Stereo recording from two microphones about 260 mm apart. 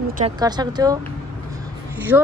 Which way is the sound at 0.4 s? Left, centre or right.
Centre.